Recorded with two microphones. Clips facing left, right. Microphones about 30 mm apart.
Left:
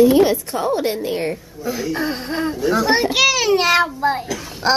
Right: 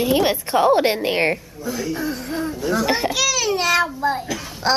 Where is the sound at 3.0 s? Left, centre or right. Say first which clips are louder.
Left 5 dB; left.